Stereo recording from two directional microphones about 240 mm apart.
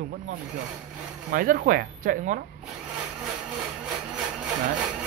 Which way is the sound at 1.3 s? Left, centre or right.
Right.